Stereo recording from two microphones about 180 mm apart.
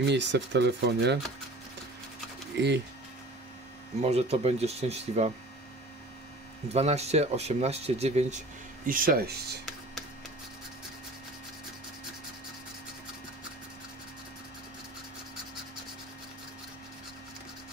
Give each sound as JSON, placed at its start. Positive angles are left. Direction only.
{"t": 0.0, "sound": "speech", "side_deg": -75}
{"t": 2.5, "sound": "speech", "side_deg": -70}
{"t": 4.0, "sound": "speech", "side_deg": -35}
{"t": 6.7, "sound": "speech", "side_deg": -35}
{"t": 8.8, "sound": "speech", "side_deg": -50}